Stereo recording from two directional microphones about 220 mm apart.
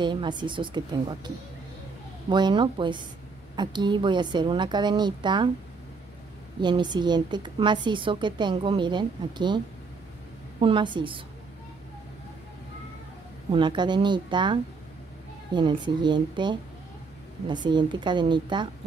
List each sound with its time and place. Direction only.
0.0 s a woman's voice: 20° right (ahead or behind)
6.6 s a woman's voice: 20° right (ahead or behind)
10.6 s a woman's voice: 20° right (ahead or behind)
13.5 s a woman's voice: 20° right (ahead or behind)